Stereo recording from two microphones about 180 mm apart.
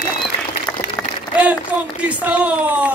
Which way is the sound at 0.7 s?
5° left (ahead or behind).